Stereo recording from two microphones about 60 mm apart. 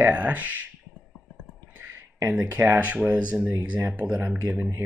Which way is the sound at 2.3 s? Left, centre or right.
Right.